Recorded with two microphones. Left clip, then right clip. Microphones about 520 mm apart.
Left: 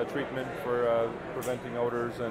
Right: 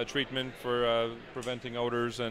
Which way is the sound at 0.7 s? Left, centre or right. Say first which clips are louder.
Left 1 dB; right.